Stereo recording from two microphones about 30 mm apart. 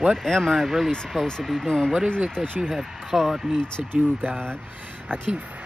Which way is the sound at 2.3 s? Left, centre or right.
Left.